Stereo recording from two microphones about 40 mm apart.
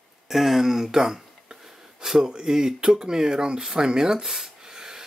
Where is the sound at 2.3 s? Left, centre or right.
Centre.